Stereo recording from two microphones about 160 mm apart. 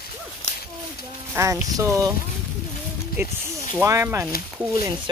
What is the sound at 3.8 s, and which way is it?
Speech, 15° right (ahead or behind).